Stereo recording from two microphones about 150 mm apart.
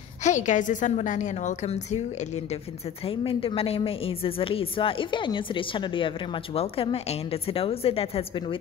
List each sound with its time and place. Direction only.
0.2 s a woman's voice: 55° left (ahead or behind)
3.1 s a woman's voice: 35° left (ahead or behind)